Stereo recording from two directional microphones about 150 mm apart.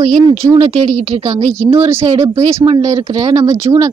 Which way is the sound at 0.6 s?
50° right (ahead or behind).